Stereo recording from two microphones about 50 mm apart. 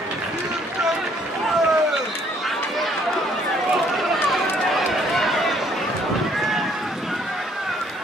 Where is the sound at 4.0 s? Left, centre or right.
Centre.